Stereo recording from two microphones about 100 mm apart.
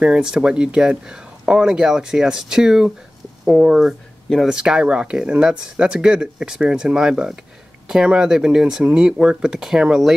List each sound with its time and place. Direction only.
0.0 s speech: 5° right (ahead or behind)